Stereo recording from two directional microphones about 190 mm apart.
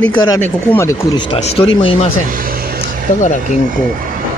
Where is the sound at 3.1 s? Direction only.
35° left (ahead or behind).